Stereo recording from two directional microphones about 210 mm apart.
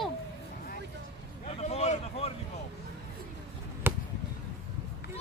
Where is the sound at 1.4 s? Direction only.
30° left (ahead or behind).